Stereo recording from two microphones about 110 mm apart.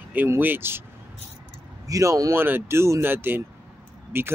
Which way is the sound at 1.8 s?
30° right (ahead or behind).